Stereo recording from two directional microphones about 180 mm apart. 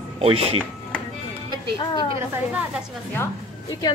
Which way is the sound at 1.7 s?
25° left (ahead or behind).